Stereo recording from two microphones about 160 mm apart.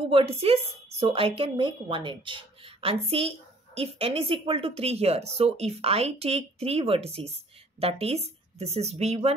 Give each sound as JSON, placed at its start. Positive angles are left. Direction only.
{"t": 0.1, "sound": "a woman's voice", "side_deg": -35}